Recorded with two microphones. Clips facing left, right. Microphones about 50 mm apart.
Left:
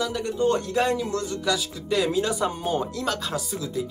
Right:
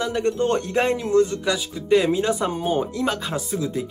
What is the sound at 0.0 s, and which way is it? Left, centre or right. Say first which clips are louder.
Speech: right 2 dB; right.